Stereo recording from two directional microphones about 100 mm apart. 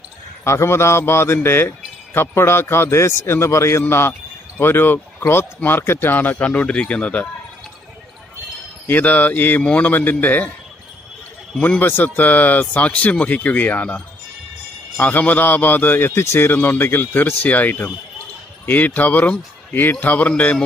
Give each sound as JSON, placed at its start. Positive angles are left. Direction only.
{"t": 0.4, "sound": "speech", "side_deg": 30}
{"t": 8.8, "sound": "a man's voice", "side_deg": 15}
{"t": 11.5, "sound": "a man's voice", "side_deg": 10}